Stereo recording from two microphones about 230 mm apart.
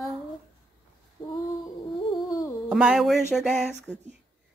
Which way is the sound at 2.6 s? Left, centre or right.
Centre.